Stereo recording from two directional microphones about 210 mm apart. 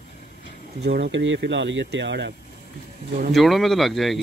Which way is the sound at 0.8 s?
50° right (ahead or behind).